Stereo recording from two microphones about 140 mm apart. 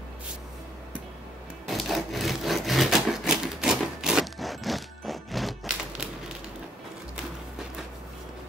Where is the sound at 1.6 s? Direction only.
Centre (ahead or behind).